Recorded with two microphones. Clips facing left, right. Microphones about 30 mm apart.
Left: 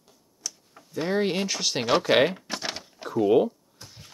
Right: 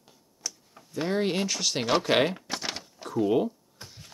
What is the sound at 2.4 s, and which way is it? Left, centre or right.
Typing, centre.